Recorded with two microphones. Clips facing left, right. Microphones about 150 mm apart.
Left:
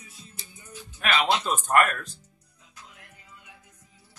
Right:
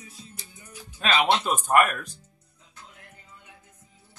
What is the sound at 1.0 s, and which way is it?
Speech, 20° right (ahead or behind).